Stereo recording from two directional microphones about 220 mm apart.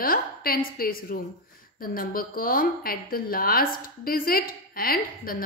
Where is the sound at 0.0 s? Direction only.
40° left (ahead or behind).